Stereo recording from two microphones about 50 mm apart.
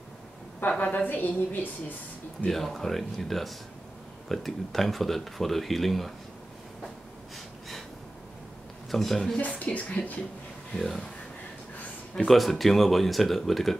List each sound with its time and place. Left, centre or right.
0.7 s speech: left
1.0 s a woman's voice: left
2.4 s speech: centre
8.9 s speech: centre
9.5 s speech: left
10.8 s speech: centre
12.3 s speech: centre